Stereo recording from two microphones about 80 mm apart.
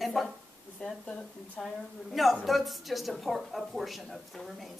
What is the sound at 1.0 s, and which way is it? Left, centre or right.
Speech, centre.